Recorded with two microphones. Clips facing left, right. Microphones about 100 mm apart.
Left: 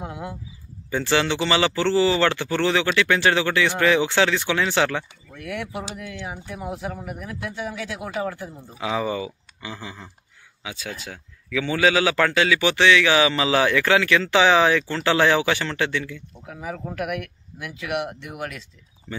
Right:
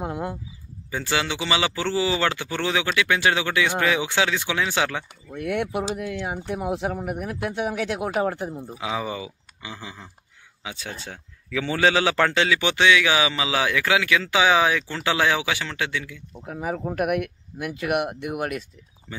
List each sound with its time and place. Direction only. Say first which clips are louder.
0.0 s a sound: right 4 dB; 45° right (ahead or behind)
0.8 s a man's voice: left 4 dB; 10° right (ahead or behind)
5.4 s speech: right 5 dB; 55° right (ahead or behind)
8.7 s a man's voice: left 5 dB; 15° right (ahead or behind)
10.6 s a man's voice: left 1 dB; 25° right (ahead or behind); by 16.2 s 10° right (ahead or behind)
16.9 s speech: right 5 dB; 55° right (ahead or behind)